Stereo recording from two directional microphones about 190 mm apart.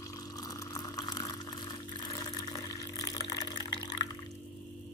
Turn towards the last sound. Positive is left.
turn(degrees=20)  # may be behind; listen again after turning